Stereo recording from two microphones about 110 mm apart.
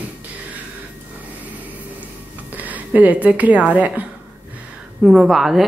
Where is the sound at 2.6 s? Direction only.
15° right (ahead or behind).